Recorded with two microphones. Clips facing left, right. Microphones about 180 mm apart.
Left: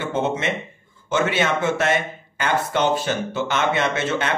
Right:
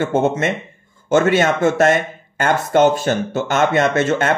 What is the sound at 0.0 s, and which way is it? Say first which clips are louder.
Speech: right 6 dB; 45° right (ahead or behind).